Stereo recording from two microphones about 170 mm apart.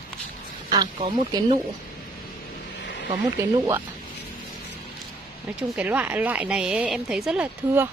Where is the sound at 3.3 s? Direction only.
15° right (ahead or behind).